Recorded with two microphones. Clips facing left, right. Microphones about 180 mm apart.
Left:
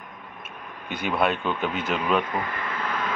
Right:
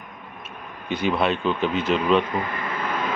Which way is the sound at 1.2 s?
10° left (ahead or behind).